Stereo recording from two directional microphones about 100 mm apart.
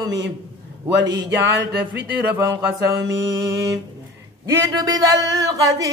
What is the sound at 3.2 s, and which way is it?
Speech, 35° right (ahead or behind).